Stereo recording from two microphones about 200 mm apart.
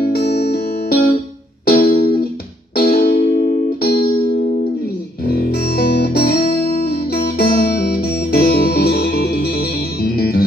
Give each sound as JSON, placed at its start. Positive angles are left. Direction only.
{"t": 0.0, "sound": "music", "side_deg": 50}
{"t": 5.2, "sound": "music", "side_deg": 50}